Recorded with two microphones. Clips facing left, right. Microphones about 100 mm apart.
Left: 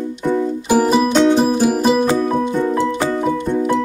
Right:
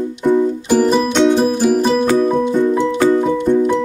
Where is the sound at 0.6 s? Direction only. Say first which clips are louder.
Left 3 dB; 5° left (ahead or behind).